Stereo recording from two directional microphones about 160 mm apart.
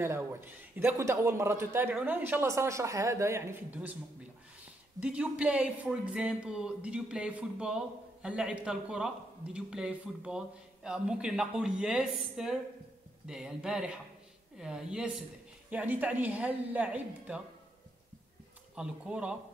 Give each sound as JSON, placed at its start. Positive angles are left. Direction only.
{"t": 0.0, "sound": "a man's voice", "side_deg": -15}
{"t": 5.0, "sound": "a man's voice", "side_deg": -5}
{"t": 18.8, "sound": "a man's voice", "side_deg": -5}